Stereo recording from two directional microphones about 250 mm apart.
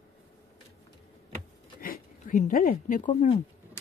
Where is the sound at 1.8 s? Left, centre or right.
Left.